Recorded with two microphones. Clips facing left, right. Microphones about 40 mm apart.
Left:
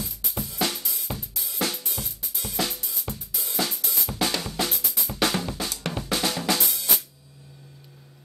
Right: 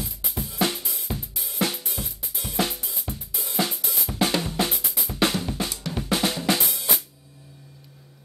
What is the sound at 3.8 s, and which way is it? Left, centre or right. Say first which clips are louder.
Drum kit: right 1 dB; right.